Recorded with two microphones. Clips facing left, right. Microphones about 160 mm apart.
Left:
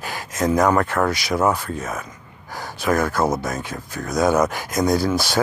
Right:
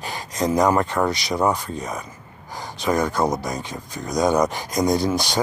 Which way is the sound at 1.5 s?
15° right (ahead or behind).